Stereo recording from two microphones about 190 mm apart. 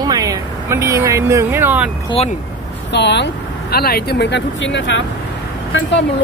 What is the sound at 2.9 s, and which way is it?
Speech, 65° left (ahead or behind).